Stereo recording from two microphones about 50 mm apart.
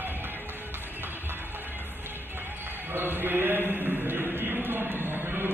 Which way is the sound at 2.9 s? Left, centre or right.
Right.